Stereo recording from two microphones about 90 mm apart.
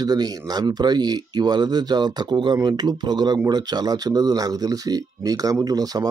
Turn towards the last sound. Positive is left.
turn(degrees=-45)  # may be behind; listen again after turning